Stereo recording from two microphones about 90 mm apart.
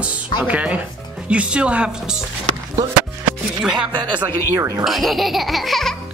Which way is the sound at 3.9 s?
60° right (ahead or behind).